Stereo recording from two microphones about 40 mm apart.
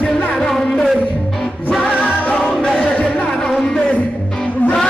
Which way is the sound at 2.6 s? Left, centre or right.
Centre.